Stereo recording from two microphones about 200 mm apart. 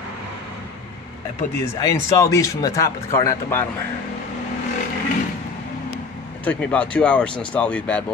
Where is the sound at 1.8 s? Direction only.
15° left (ahead or behind).